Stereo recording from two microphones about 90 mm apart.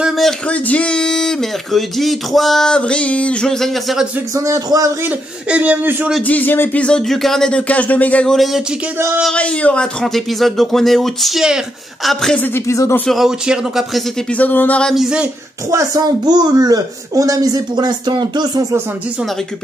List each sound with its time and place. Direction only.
0.5 s speech: 15° left (ahead or behind)
4.4 s speech: 40° right (ahead or behind)
5.0 s speech: 15° right (ahead or behind)
6.2 s speech: 20° left (ahead or behind)
8.3 s speech: centre (ahead or behind)
8.9 s speech: 25° right (ahead or behind)
9.2 s speech: 10° left (ahead or behind)
12.4 s speech: 25° left (ahead or behind)
13.0 s speech: centre (ahead or behind)
14.3 s speech: 20° left (ahead or behind)
15.0 s speech: 10° right (ahead or behind)
15.7 s a man's voice: 40° right (ahead or behind)